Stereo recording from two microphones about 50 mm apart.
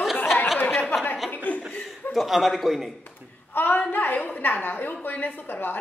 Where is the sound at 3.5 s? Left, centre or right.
Left.